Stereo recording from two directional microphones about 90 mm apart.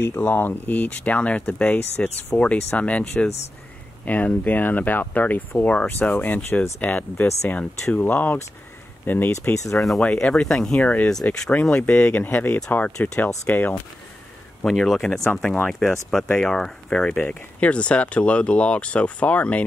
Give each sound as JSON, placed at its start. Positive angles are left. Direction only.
{"t": 0.0, "sound": "speech", "side_deg": 25}
{"t": 9.3, "sound": "speech", "side_deg": 35}
{"t": 9.8, "sound": "speech", "side_deg": 0}
{"t": 10.0, "sound": "speech", "side_deg": 15}
{"t": 14.6, "sound": "speech", "side_deg": 5}